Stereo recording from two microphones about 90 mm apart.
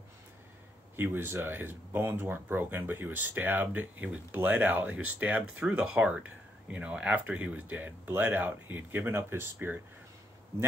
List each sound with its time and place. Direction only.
0.9 s speech: 25° right (ahead or behind)